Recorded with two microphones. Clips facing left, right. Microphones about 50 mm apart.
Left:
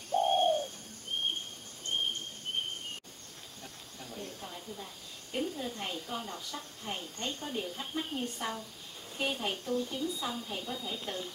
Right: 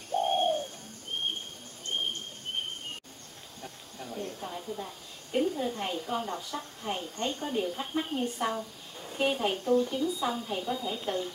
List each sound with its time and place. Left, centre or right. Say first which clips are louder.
0.1 s bird: even; centre
3.6 s snake: right 6 dB; right
5.7 s a woman's voice: right 6 dB; centre